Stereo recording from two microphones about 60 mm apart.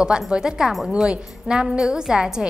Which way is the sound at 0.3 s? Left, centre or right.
Centre.